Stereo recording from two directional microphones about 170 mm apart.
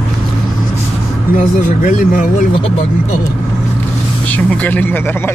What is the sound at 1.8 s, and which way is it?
Speech, 45° left (ahead or behind).